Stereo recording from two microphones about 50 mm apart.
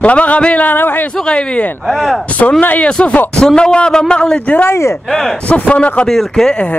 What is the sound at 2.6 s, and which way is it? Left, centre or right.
Speech, left.